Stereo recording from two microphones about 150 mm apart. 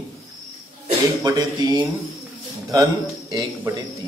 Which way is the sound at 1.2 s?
25° right (ahead or behind).